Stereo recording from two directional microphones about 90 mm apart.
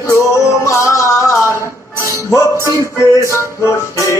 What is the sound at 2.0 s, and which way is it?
Music, 35° right (ahead or behind).